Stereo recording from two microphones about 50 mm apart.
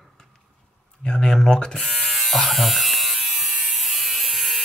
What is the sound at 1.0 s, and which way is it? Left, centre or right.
Speech, centre.